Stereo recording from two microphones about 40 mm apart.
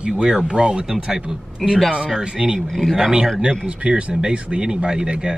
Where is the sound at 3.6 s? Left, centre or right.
Right.